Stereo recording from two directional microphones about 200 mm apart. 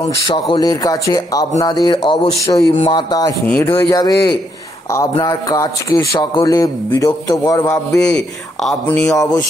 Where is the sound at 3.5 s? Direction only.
10° left (ahead or behind).